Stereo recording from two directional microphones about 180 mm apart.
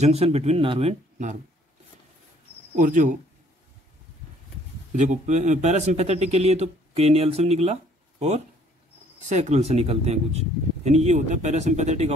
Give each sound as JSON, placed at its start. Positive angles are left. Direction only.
{"t": 0.0, "sound": "a man's voice", "side_deg": -35}
{"t": 1.1, "sound": "speech", "side_deg": -45}
{"t": 2.7, "sound": "speech", "side_deg": -45}
{"t": 4.9, "sound": "a man's voice", "side_deg": -40}